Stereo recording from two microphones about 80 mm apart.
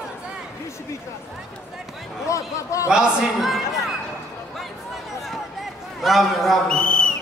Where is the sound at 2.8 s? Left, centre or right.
Centre.